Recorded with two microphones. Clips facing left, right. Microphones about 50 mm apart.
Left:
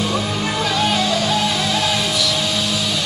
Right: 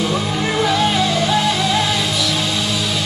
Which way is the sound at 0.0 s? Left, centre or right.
Centre.